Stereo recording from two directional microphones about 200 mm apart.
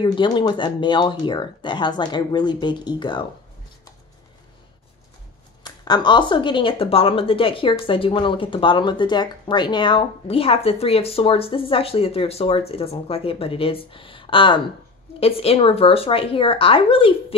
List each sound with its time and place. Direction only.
0.0 s speech: 25° left (ahead or behind)
5.6 s speech: 20° left (ahead or behind)